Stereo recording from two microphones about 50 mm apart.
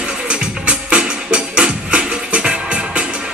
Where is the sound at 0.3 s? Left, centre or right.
Right.